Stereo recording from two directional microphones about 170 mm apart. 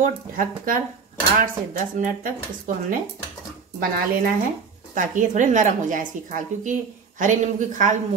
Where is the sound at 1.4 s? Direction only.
55° right (ahead or behind).